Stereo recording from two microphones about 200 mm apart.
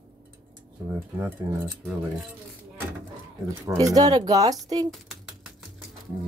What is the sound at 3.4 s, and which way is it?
Speech, 15° right (ahead or behind).